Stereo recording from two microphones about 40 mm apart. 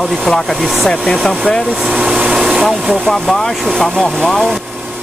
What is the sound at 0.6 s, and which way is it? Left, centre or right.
Speech, centre.